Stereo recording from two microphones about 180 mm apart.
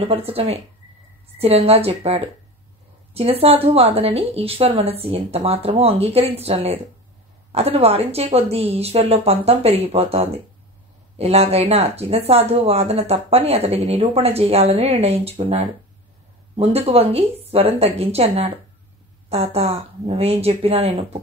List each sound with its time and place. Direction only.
0.0 s speech: 35° right (ahead or behind)